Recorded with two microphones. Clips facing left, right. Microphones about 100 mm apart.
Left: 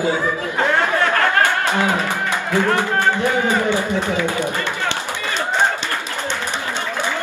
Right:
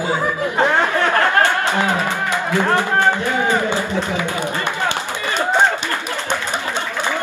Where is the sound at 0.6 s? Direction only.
20° right (ahead or behind).